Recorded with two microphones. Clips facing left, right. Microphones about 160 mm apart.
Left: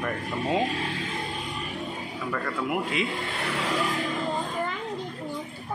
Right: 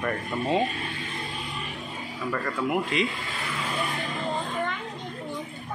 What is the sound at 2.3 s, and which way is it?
Speech, centre (ahead or behind).